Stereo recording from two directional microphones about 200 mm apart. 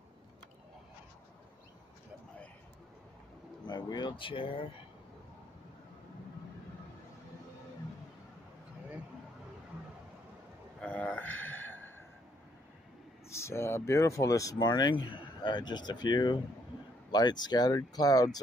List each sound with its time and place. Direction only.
3.6 s speech: 20° left (ahead or behind)
10.8 s a sound: 5° left (ahead or behind)
13.3 s speech: 15° left (ahead or behind)